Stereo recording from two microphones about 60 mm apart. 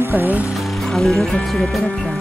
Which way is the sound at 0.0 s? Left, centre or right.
Right.